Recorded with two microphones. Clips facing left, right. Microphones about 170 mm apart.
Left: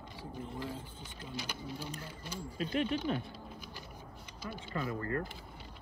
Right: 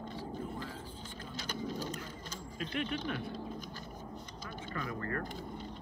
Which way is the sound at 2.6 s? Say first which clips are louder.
Left 4 dB; 35° left (ahead or behind).